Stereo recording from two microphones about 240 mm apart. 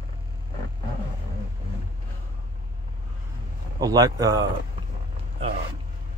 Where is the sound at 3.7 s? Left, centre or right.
Centre.